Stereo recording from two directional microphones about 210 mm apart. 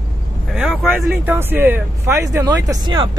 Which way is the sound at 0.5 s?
Centre (ahead or behind).